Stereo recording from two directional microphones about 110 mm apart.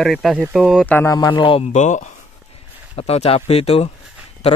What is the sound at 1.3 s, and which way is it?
Speech, 50° left (ahead or behind).